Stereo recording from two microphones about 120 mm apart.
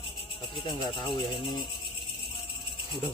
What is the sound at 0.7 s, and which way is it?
Speech, 40° left (ahead or behind).